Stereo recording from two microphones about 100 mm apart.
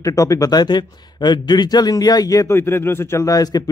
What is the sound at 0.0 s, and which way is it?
A man's voice, 35° left (ahead or behind).